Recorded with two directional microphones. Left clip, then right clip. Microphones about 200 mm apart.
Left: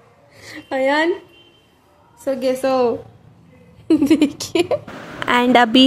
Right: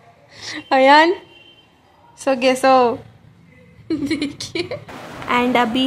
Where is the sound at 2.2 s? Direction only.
15° right (ahead or behind).